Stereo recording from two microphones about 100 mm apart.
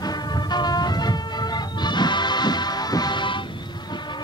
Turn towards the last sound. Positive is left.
turn(degrees=50)  # may be behind; listen again after turning